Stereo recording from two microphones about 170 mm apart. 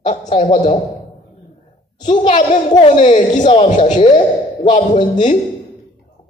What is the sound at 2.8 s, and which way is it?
A man's voice, 45° left (ahead or behind).